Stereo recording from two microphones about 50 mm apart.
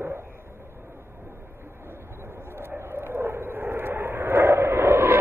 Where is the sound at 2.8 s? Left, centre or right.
Right.